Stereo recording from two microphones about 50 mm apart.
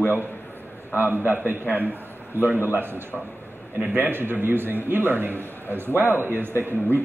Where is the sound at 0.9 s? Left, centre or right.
Right.